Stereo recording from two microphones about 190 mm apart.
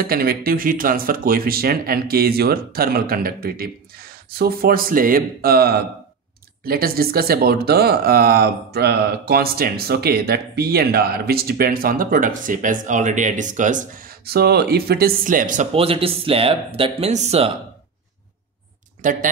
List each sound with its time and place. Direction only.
0.0 s speech: 50° right (ahead or behind)
15.7 s speech: 30° right (ahead or behind)
19.0 s speech: 45° right (ahead or behind)